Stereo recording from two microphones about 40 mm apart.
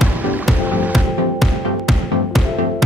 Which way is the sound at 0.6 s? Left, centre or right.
Right.